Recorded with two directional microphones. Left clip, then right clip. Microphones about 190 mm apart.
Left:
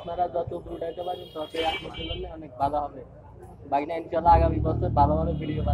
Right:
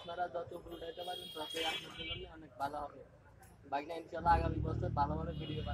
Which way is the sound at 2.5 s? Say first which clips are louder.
Left 14 dB; 5° right (ahead or behind).